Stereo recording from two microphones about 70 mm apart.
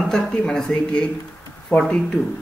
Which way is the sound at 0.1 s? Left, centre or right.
Centre.